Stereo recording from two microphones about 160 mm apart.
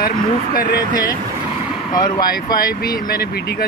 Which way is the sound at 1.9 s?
25° left (ahead or behind).